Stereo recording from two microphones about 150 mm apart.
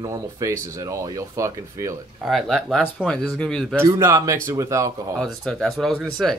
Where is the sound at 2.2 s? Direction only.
Centre (ahead or behind).